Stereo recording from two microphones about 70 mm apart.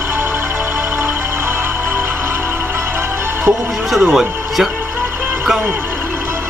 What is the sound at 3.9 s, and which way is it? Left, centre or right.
Speech, centre.